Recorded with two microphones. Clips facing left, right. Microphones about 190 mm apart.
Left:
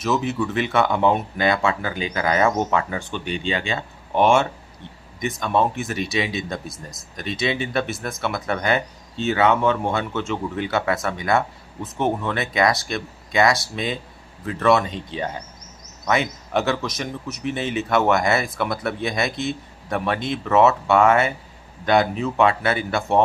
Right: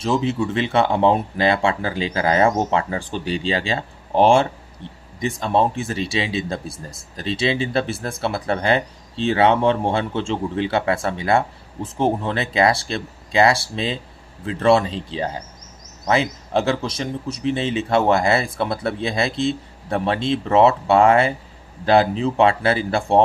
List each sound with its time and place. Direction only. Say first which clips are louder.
0.0 s speech: right 2 dB; 30° right (ahead or behind)